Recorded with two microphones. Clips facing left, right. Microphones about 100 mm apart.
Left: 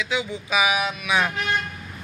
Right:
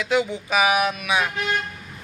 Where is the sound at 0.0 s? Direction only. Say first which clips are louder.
Right 5 dB; 55° right (ahead or behind).